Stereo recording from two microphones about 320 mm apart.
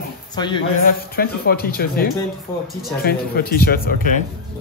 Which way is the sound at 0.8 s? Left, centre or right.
Left.